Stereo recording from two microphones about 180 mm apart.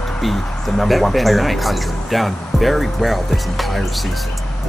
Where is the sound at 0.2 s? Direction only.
Centre (ahead or behind).